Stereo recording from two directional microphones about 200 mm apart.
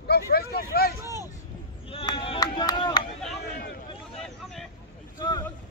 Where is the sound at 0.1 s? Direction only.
50° left (ahead or behind).